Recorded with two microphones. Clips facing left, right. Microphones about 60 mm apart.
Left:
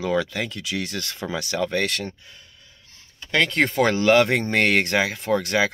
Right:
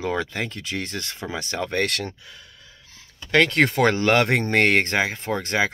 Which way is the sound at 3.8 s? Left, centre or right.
Right.